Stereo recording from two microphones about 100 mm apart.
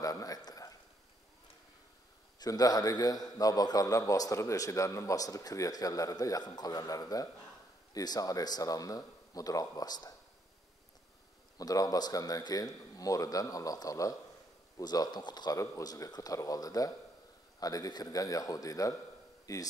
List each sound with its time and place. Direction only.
0.0 s a man's voice: 35° left (ahead or behind)
2.3 s a man's voice: 40° left (ahead or behind)
11.5 s a man's voice: 40° left (ahead or behind)